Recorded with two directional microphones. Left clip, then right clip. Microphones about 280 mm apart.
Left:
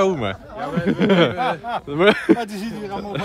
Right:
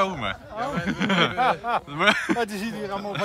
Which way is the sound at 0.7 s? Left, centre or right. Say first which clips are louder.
Left 7 dB; centre.